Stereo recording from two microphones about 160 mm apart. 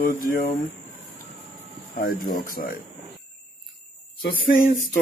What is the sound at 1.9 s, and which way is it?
Speech, 65° left (ahead or behind).